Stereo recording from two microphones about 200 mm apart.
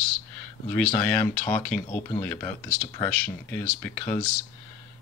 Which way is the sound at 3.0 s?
10° left (ahead or behind).